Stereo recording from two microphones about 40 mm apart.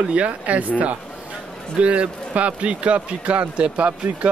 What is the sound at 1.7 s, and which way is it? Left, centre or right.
Speech, right.